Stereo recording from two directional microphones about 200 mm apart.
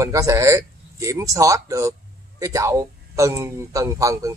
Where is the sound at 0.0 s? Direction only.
15° right (ahead or behind).